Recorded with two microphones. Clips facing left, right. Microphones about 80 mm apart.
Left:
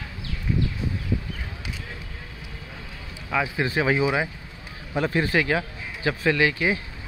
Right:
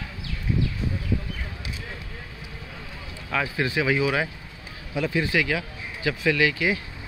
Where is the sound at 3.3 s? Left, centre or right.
Centre.